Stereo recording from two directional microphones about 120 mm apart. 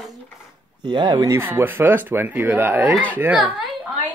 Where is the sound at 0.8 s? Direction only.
40° right (ahead or behind).